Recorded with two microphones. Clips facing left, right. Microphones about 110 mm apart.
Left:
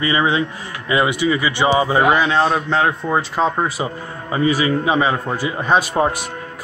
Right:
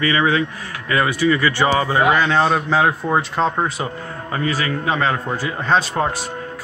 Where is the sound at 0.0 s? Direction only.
20° left (ahead or behind).